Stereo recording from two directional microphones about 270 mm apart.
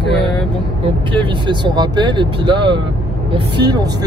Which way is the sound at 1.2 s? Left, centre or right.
Centre.